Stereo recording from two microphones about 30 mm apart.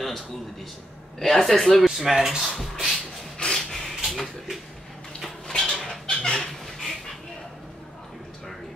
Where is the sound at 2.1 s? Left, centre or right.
Right.